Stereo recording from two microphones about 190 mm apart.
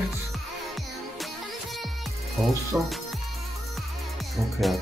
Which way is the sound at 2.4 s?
Centre (ahead or behind).